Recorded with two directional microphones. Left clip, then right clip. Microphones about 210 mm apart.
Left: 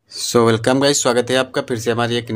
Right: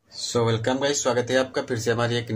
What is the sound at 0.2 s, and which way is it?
Speech, 45° left (ahead or behind).